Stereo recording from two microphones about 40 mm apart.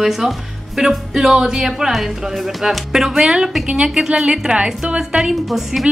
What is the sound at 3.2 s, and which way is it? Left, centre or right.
A woman's voice, centre.